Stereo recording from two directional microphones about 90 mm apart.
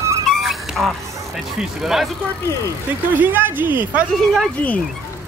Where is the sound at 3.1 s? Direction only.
20° right (ahead or behind).